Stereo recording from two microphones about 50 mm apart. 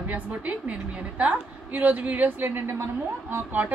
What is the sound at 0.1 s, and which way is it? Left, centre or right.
A woman's voice, right.